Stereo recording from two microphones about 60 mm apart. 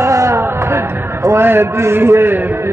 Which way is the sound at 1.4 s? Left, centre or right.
Right.